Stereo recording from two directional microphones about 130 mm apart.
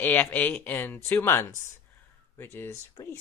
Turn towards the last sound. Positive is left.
turn(degrees=25)  # may be behind; listen again after turning